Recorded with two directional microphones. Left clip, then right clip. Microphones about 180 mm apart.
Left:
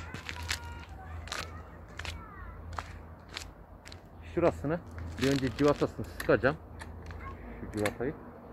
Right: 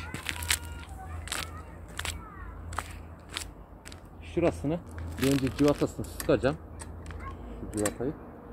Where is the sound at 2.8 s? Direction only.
60° right (ahead or behind).